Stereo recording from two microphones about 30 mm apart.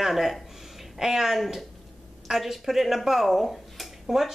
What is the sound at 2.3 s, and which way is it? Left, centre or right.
A woman's voice, centre.